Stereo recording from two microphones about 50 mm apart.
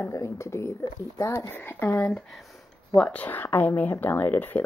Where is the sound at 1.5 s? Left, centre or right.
Left.